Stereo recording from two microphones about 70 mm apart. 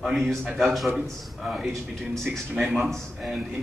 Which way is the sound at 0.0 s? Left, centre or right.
Centre.